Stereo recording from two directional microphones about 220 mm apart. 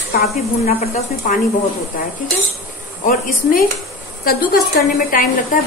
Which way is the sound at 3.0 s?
40° left (ahead or behind).